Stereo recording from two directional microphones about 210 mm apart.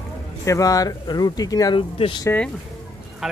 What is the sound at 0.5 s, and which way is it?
Speech, 15° left (ahead or behind).